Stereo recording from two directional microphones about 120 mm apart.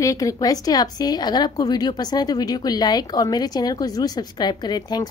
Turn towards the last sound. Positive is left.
turn(degrees=35)  # may be behind; listen again after turning